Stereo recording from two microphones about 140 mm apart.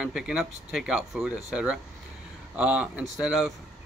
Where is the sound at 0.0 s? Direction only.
5° right (ahead or behind).